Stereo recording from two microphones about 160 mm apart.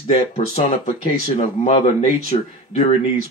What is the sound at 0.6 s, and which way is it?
Speech, 45° left (ahead or behind).